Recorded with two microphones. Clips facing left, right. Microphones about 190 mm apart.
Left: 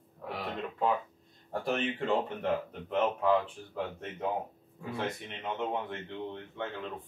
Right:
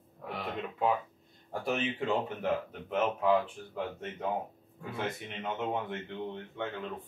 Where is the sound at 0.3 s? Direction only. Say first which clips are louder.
Even; centre (ahead or behind).